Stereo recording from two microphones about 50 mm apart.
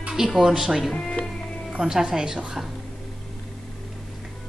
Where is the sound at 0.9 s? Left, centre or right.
Centre.